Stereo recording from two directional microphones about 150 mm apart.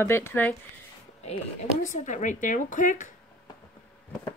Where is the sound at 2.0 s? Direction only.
55° left (ahead or behind).